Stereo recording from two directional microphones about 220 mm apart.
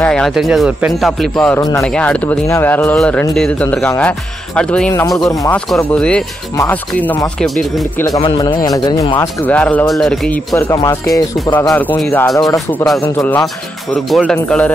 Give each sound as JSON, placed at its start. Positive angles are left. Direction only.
{"t": 0.0, "sound": "speech", "side_deg": 5}
{"t": 5.0, "sound": "speech", "side_deg": 15}
{"t": 5.8, "sound": "speech", "side_deg": 5}
{"t": 8.2, "sound": "speech", "side_deg": 25}
{"t": 9.4, "sound": "speech", "side_deg": 5}
{"t": 10.5, "sound": "speech", "side_deg": 15}